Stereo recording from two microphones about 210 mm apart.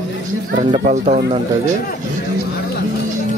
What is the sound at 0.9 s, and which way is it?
Speech, 35° right (ahead or behind).